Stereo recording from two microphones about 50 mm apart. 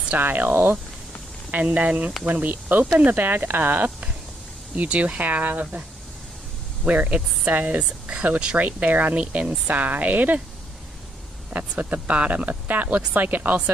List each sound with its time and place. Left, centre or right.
0.2 s speech: right
4.8 s speech: right
11.5 s speech: right